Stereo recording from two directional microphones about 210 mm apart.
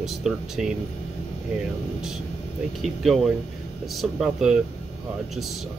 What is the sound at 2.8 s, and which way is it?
Speech, centre (ahead or behind).